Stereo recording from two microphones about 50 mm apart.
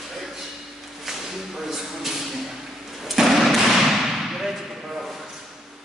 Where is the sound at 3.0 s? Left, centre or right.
Centre.